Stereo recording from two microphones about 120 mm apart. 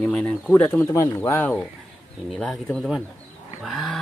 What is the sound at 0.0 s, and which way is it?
Speech, 10° left (ahead or behind).